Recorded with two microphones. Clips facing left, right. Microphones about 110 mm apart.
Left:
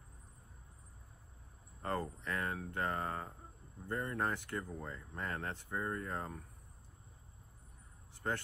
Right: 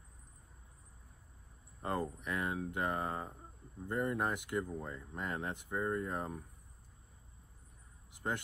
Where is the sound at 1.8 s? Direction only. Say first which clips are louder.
Right 2 dB; 15° right (ahead or behind).